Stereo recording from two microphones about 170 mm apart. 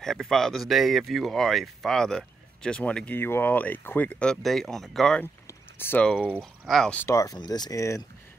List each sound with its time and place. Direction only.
0.0 s speech: centre (ahead or behind)
5.5 s a sound: 10° left (ahead or behind)
6.1 s speech: 10° right (ahead or behind); by 8.0 s 20° left (ahead or behind)